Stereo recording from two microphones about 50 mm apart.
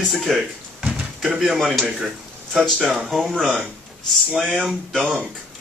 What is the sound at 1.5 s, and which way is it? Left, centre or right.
Speech, centre.